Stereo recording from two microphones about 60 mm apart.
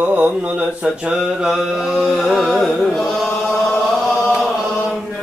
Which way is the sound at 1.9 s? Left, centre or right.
Centre.